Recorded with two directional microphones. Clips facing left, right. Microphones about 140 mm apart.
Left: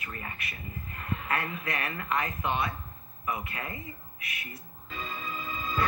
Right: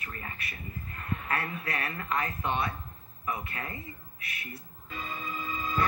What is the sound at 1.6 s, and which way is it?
Speech, 30° right (ahead or behind).